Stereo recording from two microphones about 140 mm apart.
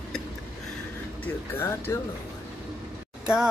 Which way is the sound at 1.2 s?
15° left (ahead or behind).